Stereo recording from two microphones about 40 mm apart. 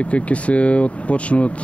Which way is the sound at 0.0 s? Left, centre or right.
Left.